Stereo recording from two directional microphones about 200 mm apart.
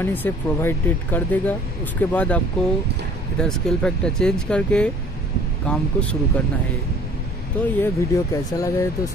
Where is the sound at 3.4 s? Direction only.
5° left (ahead or behind).